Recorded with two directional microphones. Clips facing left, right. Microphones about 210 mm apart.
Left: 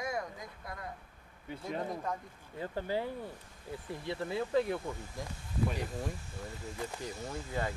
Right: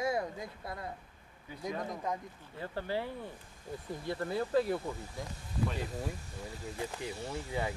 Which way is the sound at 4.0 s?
Centre (ahead or behind).